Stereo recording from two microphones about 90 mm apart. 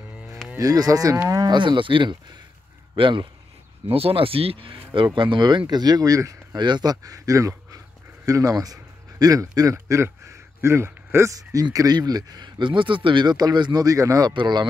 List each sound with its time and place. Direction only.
0.6 s speech: 40° right (ahead or behind); by 3.3 s 60° right (ahead or behind)
3.9 s speech: 90° right
5.0 s speech: 65° right (ahead or behind)
5.7 s speech: 50° right (ahead or behind)
6.6 s speech: 50° right (ahead or behind)
13.8 s speech: 40° right (ahead or behind)
14.3 s speech: 55° right (ahead or behind)